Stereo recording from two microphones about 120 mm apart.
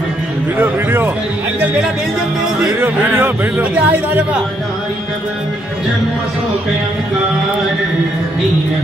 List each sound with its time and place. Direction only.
0.6 s a man's voice: 20° right (ahead or behind)
2.8 s a man's voice: 15° right (ahead or behind)